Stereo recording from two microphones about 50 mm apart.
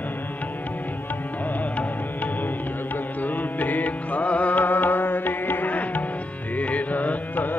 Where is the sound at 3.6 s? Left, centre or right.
Left.